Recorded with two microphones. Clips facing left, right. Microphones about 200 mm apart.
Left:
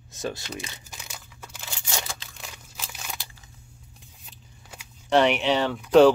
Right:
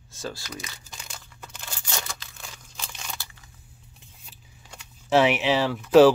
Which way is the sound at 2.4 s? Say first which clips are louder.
Left 1 dB; 5° left (ahead or behind).